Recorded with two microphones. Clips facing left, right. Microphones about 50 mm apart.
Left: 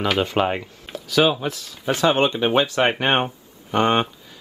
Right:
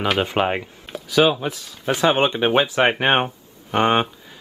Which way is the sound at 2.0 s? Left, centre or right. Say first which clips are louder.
Right 1 dB; centre.